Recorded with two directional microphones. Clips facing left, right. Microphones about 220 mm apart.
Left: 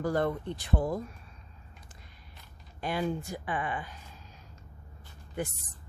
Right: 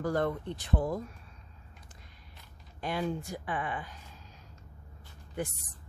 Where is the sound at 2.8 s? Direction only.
5° left (ahead or behind).